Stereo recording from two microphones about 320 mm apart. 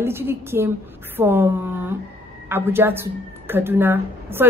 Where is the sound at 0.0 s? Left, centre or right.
Centre.